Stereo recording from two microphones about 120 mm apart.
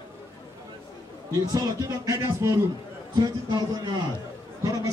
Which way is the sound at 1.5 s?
30° right (ahead or behind).